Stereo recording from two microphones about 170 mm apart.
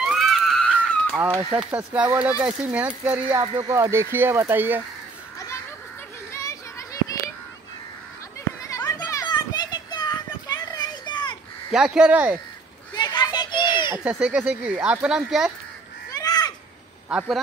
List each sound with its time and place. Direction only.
0.0 s screaming: centre (ahead or behind)
1.1 s speech: 10° right (ahead or behind)
6.3 s children playing: 20° left (ahead or behind)
8.6 s children playing: 20° left (ahead or behind)
11.7 s speech: 5° right (ahead or behind)
12.9 s a sound: 25° left (ahead or behind)
13.9 s speech: 5° right (ahead or behind)
16.1 s a sound: 20° left (ahead or behind)
17.1 s speech: 5° right (ahead or behind)